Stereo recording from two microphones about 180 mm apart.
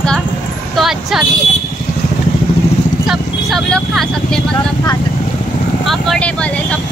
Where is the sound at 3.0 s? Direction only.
Centre (ahead or behind).